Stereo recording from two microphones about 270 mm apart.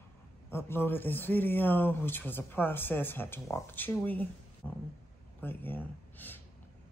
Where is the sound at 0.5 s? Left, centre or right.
Centre.